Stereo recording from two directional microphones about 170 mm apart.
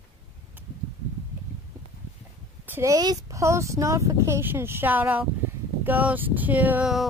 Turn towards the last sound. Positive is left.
turn(degrees=-5)  # may be behind; listen again after turning